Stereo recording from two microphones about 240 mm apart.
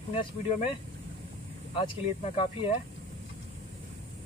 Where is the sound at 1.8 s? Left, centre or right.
Left.